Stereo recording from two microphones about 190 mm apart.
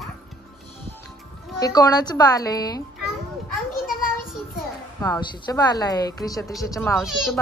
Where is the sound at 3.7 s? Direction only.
50° left (ahead or behind).